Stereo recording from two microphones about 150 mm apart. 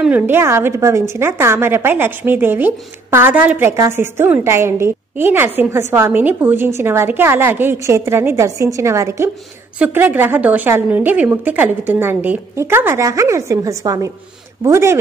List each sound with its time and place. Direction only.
0.0 s a woman's voice: 10° right (ahead or behind)